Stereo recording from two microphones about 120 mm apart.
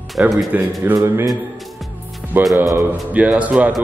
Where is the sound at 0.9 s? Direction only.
25° right (ahead or behind).